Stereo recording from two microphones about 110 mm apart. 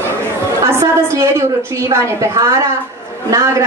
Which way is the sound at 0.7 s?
25° right (ahead or behind).